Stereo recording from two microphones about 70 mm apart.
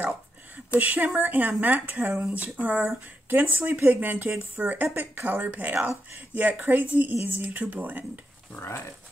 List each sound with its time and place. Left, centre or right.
0.7 s speech: right
8.5 s speech: left